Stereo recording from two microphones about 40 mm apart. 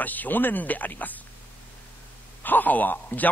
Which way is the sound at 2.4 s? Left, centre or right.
Left.